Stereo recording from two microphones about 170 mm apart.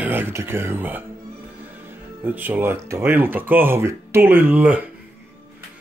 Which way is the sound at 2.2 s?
10° right (ahead or behind).